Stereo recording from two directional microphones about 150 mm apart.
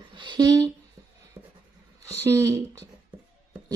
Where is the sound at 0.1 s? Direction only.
30° right (ahead or behind).